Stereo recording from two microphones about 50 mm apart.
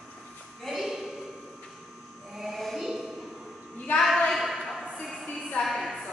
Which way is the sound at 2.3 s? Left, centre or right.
Centre.